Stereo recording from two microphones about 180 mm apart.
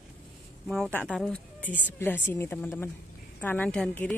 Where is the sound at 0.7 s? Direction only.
5° left (ahead or behind).